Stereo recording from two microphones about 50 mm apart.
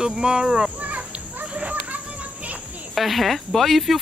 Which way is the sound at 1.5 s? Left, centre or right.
Right.